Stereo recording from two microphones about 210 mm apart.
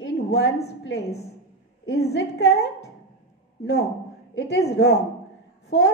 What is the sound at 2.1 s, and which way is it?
Speech, 50° left (ahead or behind).